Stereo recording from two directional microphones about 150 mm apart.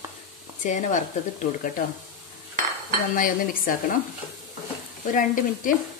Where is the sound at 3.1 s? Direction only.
65° left (ahead or behind).